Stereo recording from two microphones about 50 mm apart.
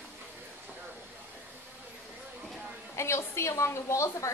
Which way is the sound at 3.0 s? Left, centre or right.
Left.